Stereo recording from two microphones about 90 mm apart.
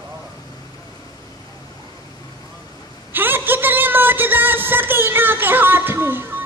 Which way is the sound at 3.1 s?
25° right (ahead or behind).